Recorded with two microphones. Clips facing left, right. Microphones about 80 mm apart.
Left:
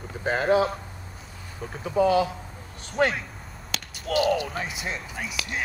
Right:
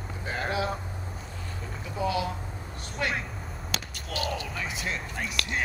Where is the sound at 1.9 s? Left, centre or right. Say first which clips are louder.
Left 8 dB; left.